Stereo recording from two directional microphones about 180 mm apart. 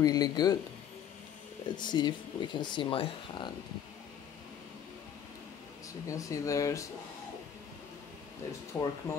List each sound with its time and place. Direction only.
0.0 s speech: 20° left (ahead or behind)
1.8 s speech: 25° left (ahead or behind)
6.0 s speech: 20° left (ahead or behind)
8.7 s speech: 15° left (ahead or behind)